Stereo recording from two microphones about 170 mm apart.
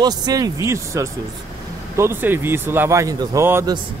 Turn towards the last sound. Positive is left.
turn(degrees=-15)  # may be behind; listen again after turning